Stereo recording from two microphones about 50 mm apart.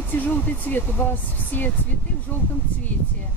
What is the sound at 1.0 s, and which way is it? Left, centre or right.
Speech, left.